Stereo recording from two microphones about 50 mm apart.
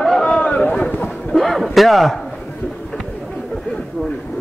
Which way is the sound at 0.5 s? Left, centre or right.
Left.